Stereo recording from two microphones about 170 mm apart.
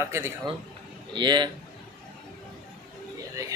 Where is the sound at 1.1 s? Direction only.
25° right (ahead or behind).